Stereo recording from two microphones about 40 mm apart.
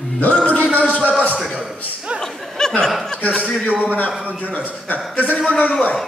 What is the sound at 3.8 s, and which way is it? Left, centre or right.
A man's voice, left.